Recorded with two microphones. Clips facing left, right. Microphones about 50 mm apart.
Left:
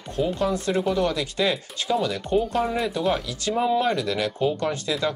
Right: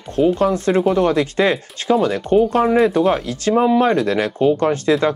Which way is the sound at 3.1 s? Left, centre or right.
Right.